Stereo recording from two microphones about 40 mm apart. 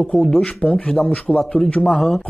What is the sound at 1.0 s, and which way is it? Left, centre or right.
Speech, left.